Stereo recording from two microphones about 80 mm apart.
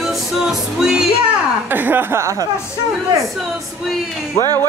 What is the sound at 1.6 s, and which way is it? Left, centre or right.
Speech, right.